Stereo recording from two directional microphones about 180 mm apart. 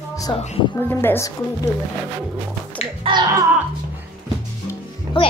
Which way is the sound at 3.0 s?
30° right (ahead or behind).